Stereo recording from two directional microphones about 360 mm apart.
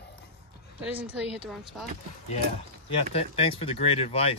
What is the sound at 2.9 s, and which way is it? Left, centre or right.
Speech, centre.